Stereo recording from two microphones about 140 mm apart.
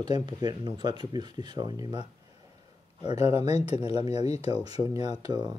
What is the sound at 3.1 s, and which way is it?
Speech, 45° left (ahead or behind).